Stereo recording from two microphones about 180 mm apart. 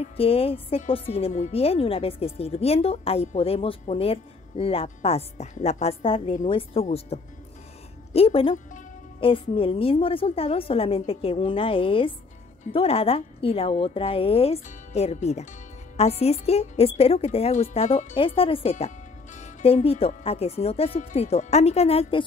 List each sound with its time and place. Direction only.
0.2 s speech: 30° left (ahead or behind)